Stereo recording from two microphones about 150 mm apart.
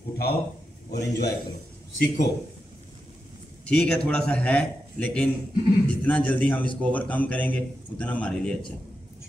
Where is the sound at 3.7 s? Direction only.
5° left (ahead or behind).